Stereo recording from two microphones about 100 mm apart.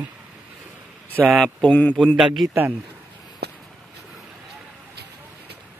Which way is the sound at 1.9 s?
Centre (ahead or behind).